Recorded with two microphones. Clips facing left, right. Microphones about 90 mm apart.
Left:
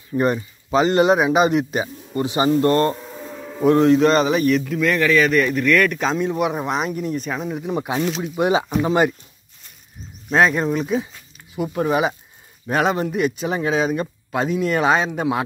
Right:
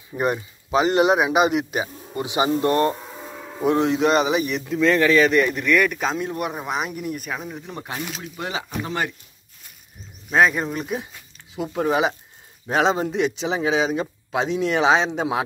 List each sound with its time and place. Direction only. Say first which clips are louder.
0.1 s speech: left 4 dB; 10° right (ahead or behind)
6.7 s speech: left 4 dB; 5° right (ahead or behind); by 9.1 s 20° left (ahead or behind)
10.3 s speech: left 2 dB; centre (ahead or behind)
12.6 s speech: even; 20° right (ahead or behind)